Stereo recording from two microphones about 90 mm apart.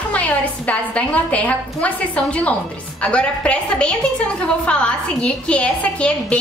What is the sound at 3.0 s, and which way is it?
A woman's voice, 10° left (ahead or behind).